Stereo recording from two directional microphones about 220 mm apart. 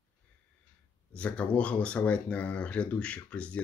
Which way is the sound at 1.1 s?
5° left (ahead or behind).